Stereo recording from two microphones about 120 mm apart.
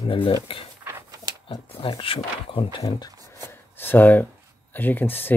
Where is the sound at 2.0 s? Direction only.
50° left (ahead or behind).